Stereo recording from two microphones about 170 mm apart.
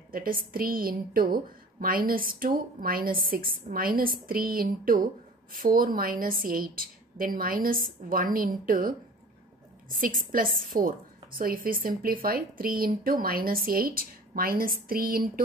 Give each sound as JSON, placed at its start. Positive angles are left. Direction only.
{"t": 0.1, "sound": "a woman's voice", "side_deg": -55}
{"t": 9.9, "sound": "a woman's voice", "side_deg": -55}